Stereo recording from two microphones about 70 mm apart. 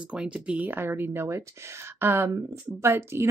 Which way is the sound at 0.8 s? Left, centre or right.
Right.